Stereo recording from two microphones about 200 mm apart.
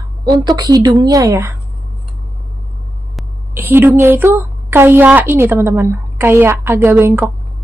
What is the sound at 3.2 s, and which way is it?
A woman's voice, 10° right (ahead or behind).